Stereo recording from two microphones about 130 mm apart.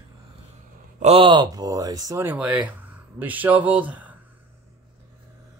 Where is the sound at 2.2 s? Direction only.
10° right (ahead or behind).